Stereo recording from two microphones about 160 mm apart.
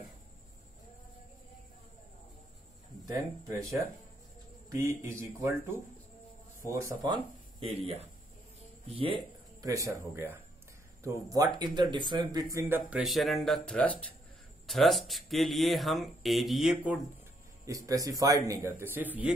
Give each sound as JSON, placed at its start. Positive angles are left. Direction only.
{"t": 5.0, "sound": "a man's voice", "side_deg": -15}
{"t": 7.6, "sound": "speech", "side_deg": -40}
{"t": 8.8, "sound": "a sound", "side_deg": -35}
{"t": 9.7, "sound": "a man's voice", "side_deg": -20}
{"t": 13.0, "sound": "speech", "side_deg": 0}
{"t": 17.6, "sound": "a man's voice", "side_deg": -20}